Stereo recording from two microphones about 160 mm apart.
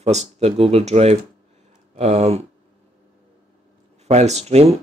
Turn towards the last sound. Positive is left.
turn(degrees=-40)  # may be behind; listen again after turning